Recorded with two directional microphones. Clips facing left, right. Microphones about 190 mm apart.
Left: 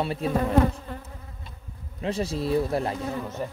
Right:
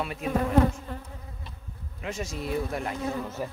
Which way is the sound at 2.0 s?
35° left (ahead or behind).